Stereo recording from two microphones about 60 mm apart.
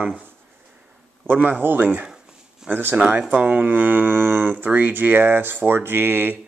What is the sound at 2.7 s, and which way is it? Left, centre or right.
Speech, right.